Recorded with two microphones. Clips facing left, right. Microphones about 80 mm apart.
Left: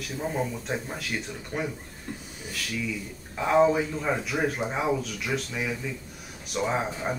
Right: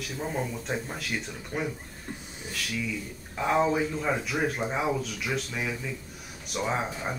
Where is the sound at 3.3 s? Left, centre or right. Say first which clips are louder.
Left 3 dB; centre.